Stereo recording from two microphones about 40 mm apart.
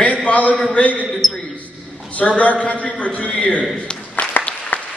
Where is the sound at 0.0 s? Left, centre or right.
Left.